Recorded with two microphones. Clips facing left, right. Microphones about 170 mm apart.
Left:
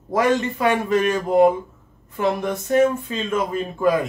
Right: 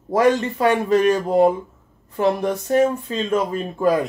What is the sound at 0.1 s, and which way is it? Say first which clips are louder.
Speech: right 2 dB; 35° right (ahead or behind).